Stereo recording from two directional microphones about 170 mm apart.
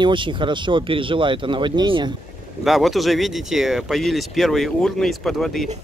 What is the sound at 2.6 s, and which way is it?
Speech, centre (ahead or behind).